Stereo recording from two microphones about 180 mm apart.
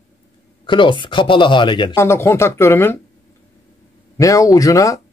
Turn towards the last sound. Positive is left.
turn(degrees=20)  # may be behind; listen again after turning